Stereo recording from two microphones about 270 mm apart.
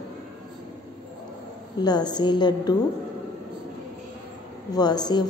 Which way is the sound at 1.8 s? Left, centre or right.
Centre.